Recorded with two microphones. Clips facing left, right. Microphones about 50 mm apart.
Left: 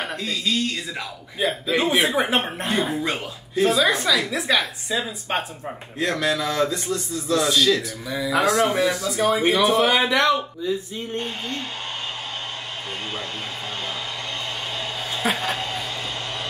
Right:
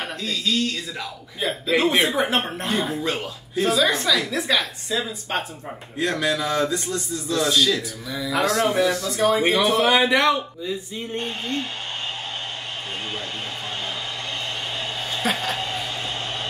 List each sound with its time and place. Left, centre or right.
0.0 s speech: centre
5.9 s speech: centre
8.5 s speech: centre
8.7 s speech: centre
15.2 s a sound: centre